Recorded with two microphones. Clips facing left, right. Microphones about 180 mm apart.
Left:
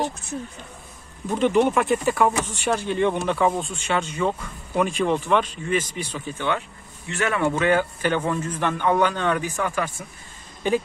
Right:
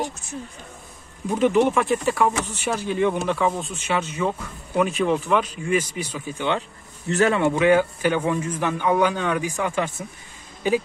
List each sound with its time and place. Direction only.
1.3 s speech: 5° right (ahead or behind)
7.1 s speech: 40° right (ahead or behind)
7.3 s a man's voice: 15° right (ahead or behind)
9.7 s speech: 20° right (ahead or behind)